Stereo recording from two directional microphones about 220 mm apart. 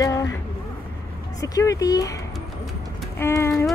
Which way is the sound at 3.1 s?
10° left (ahead or behind).